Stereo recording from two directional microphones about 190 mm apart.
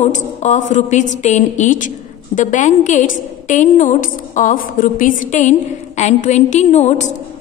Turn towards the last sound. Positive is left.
turn(degrees=40)  # may be behind; listen again after turning